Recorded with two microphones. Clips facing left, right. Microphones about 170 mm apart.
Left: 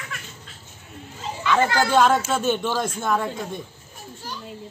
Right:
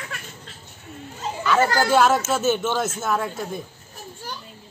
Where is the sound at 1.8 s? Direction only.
5° right (ahead or behind).